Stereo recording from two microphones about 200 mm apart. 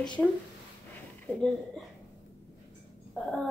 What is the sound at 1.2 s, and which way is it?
Child singing, centre (ahead or behind).